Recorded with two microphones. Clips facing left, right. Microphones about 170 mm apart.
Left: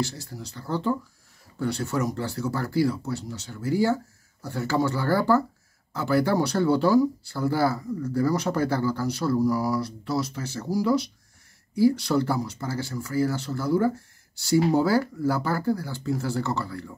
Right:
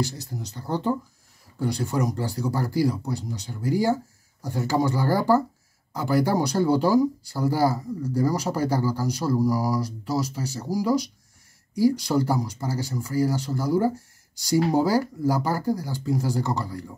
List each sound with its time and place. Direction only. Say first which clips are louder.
0.0 s speech: right 1 dB; 15° right (ahead or behind)
11.9 s speech: right 1 dB; 10° right (ahead or behind)